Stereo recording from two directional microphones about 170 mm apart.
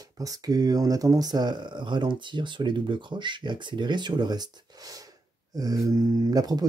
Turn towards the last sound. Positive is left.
turn(degrees=-20)  # may be behind; listen again after turning